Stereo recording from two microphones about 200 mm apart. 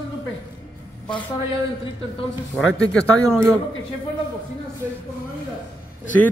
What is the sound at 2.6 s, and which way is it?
Speech, 5° left (ahead or behind).